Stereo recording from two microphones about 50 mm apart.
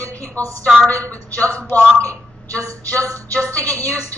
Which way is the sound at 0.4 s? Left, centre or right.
Left.